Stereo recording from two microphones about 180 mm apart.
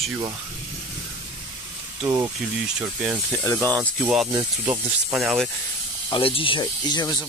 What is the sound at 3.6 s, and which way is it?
Speech, 20° right (ahead or behind).